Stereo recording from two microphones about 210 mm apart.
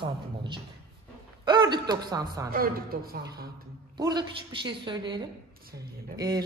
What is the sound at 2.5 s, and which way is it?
Speech, 45° right (ahead or behind).